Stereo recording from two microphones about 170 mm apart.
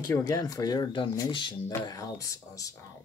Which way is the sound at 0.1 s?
20° left (ahead or behind).